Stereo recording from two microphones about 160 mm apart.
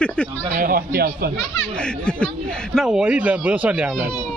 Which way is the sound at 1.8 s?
5° left (ahead or behind).